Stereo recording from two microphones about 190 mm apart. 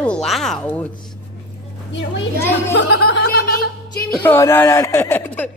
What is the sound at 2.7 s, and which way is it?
Music, 65° left (ahead or behind).